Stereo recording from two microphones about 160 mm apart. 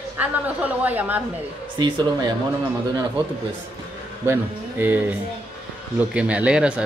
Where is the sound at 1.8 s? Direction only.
25° right (ahead or behind).